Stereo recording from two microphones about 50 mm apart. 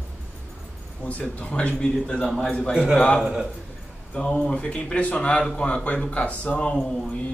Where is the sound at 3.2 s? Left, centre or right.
Centre.